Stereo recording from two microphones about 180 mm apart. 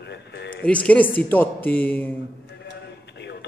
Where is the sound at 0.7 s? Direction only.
10° left (ahead or behind).